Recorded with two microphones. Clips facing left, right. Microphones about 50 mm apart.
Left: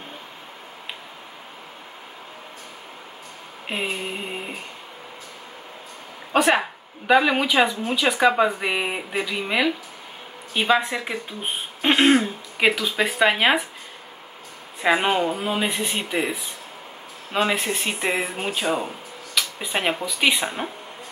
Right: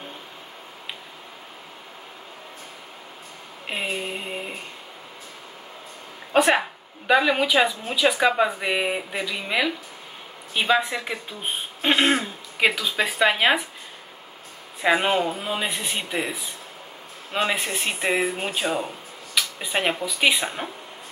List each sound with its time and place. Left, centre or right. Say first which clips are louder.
3.6 s a sound: left 1 dB; centre
6.3 s speech: even; centre
14.8 s speech: left 1 dB; centre